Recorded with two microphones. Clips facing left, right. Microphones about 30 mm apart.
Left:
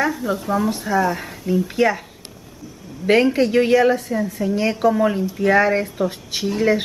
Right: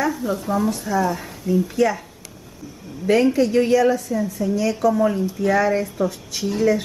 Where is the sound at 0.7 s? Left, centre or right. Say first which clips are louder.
Left 3 dB; left.